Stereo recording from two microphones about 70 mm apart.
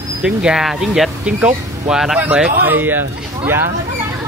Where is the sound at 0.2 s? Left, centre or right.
Centre.